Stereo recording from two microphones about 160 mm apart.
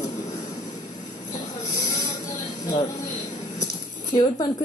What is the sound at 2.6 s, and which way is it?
A woman's voice, 25° left (ahead or behind).